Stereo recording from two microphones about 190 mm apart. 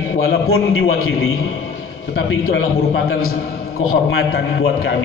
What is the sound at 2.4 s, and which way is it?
Speech, 70° left (ahead or behind).